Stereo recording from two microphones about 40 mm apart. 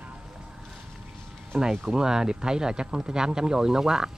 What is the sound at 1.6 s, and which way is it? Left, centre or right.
Speech, centre.